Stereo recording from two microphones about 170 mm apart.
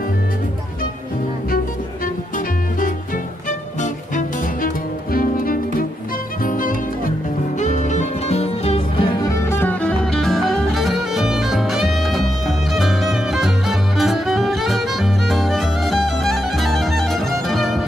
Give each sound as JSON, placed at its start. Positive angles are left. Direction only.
{"t": 5.1, "sound": "music", "side_deg": 55}
{"t": 7.5, "sound": "music", "side_deg": 45}
{"t": 9.2, "sound": "music", "side_deg": 15}